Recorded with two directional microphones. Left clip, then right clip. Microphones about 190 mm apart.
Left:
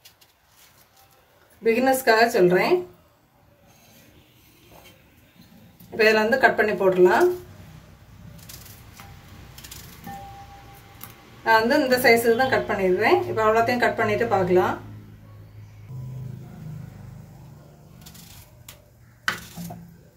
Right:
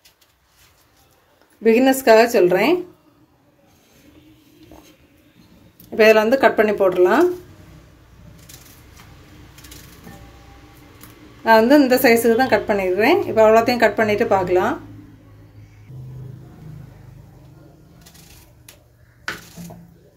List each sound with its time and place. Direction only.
1.6 s a woman's voice: 45° right (ahead or behind)
5.9 s speech: 40° right (ahead or behind)
11.4 s a woman's voice: 45° right (ahead or behind)